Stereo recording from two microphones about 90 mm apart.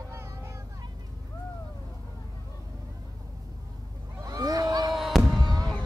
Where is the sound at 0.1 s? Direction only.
30° right (ahead or behind).